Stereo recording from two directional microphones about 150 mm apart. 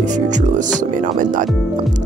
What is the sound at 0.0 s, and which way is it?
Speech, 55° right (ahead or behind).